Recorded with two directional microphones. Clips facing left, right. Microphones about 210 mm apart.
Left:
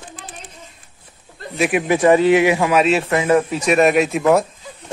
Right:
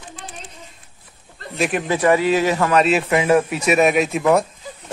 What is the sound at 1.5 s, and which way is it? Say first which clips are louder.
Speech: left 3 dB; centre (ahead or behind).